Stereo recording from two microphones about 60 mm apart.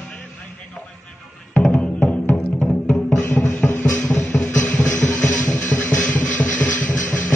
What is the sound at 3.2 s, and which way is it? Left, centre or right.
Music, left.